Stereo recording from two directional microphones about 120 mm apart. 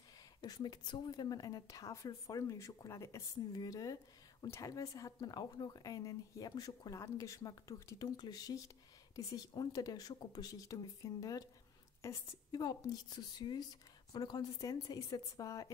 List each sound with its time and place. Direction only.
0.4 s a woman's voice: 35° left (ahead or behind)